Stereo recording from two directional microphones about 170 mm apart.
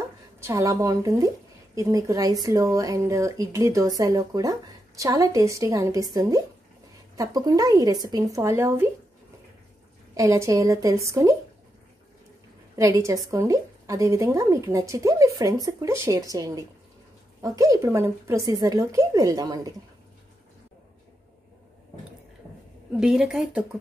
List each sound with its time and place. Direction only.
0.4 s speech: 20° right (ahead or behind)
10.1 s speech: 20° right (ahead or behind)
13.0 s speech: 20° right (ahead or behind)
22.9 s speech: 5° right (ahead or behind)